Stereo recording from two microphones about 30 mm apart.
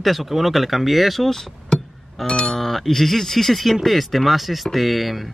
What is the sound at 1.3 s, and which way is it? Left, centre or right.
Speech, centre.